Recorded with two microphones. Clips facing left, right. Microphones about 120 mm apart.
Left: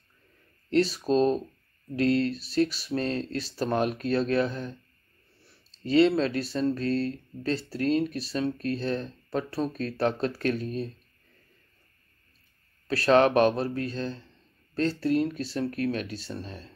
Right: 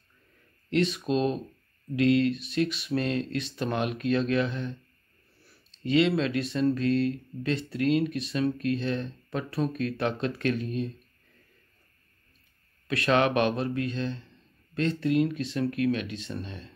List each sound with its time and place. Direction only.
0.7 s speech: 35° left (ahead or behind)
12.8 s speech: 35° left (ahead or behind)